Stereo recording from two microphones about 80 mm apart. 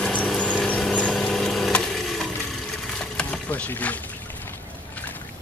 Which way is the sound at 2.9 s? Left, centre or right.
Centre.